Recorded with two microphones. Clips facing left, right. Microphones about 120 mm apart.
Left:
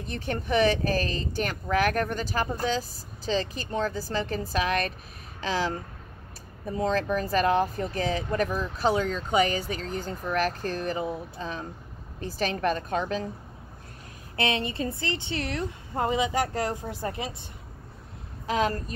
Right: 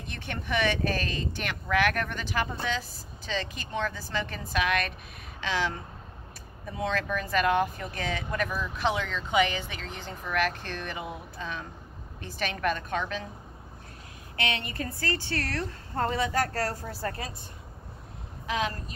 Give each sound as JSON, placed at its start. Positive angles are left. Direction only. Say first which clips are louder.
{"t": 0.0, "sound": "speech", "louder": "left 6 dB", "side_deg": 40}
{"t": 14.3, "sound": "speech", "louder": "left 5 dB", "side_deg": 30}
{"t": 18.5, "sound": "speech", "louder": "left 4 dB", "side_deg": 40}